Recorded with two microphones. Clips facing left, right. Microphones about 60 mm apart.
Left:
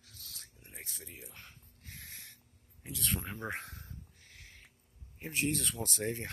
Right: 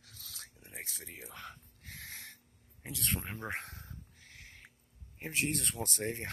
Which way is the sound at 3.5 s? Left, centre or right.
Right.